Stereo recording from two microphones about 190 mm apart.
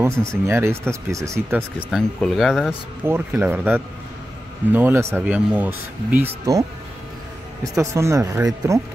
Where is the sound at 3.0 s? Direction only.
10° right (ahead or behind).